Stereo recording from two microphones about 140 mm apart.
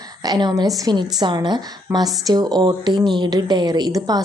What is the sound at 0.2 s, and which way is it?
A woman's voice, 30° right (ahead or behind).